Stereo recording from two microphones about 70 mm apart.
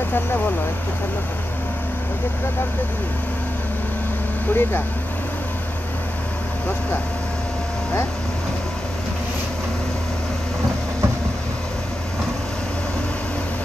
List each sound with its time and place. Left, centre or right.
4.5 s speech: left